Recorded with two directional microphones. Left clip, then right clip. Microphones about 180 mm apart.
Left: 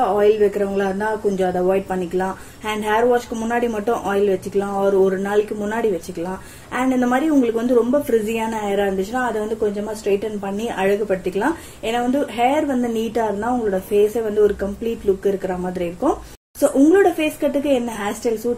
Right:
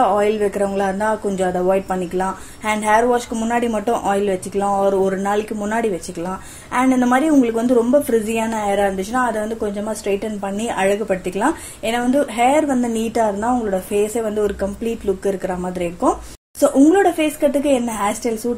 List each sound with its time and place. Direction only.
0.2 s a woman's voice: 25° right (ahead or behind)